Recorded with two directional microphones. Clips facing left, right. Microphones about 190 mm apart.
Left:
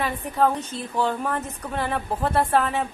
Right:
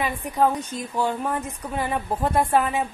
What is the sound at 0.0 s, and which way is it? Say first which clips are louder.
A woman's voice: even; 10° right (ahead or behind).